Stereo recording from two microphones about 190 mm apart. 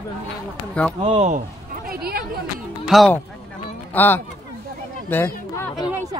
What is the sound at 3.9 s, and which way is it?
Speech, 10° left (ahead or behind).